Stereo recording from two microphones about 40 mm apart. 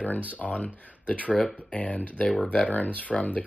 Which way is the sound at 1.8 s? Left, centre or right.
Left.